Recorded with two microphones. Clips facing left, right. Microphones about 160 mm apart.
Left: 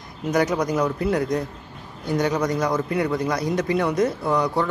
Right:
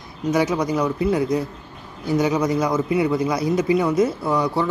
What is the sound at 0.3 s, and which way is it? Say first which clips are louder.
A man's voice: right 1 dB; 5° right (ahead or behind).